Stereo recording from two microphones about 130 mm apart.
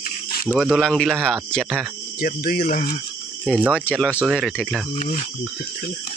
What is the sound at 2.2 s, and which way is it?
Speech, 90° left.